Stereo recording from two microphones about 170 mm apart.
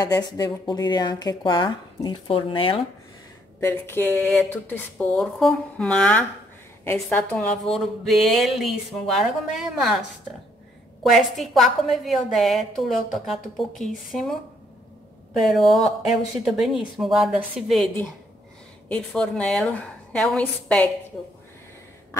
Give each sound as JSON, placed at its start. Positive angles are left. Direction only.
{"t": 0.0, "sound": "speech", "side_deg": 20}
{"t": 3.6, "sound": "a woman's voice", "side_deg": 15}
{"t": 11.1, "sound": "a woman's voice", "side_deg": 0}
{"t": 15.4, "sound": "a woman's voice", "side_deg": 0}
{"t": 18.9, "sound": "speech", "side_deg": 5}